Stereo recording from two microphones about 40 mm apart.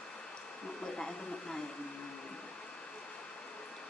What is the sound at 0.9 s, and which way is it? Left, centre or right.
Speech, centre.